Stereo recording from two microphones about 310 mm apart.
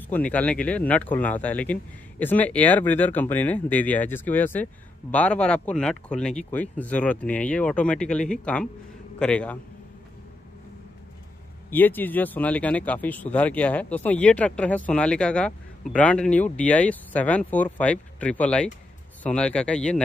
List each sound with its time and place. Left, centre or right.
0.1 s speech: centre
11.7 s speech: centre